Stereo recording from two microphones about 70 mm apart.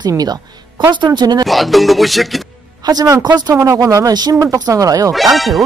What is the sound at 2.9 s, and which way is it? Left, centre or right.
Speech, right.